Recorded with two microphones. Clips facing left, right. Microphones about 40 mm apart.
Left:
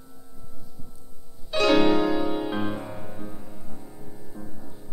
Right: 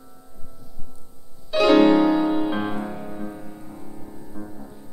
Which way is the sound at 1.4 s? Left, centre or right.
Centre.